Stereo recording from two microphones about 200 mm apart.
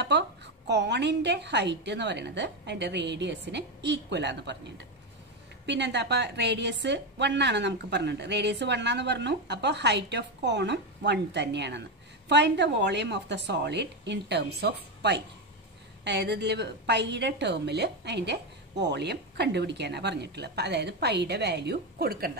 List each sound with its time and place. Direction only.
0.7 s a woman's voice: 60° right (ahead or behind)